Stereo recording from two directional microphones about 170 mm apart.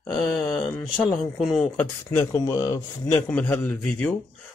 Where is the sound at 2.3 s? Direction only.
20° left (ahead or behind).